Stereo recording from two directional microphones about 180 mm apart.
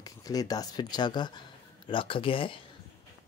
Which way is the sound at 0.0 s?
20° left (ahead or behind).